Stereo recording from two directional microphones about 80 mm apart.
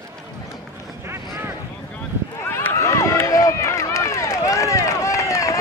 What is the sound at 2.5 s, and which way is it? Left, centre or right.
Run, left.